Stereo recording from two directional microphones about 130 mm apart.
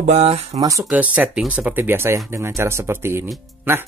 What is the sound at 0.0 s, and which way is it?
Speech, 55° right (ahead or behind).